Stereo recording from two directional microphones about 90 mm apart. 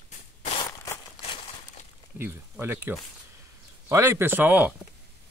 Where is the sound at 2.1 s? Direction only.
20° right (ahead or behind).